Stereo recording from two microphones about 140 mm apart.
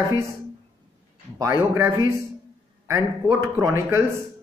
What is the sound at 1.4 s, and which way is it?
Speech, 20° right (ahead or behind).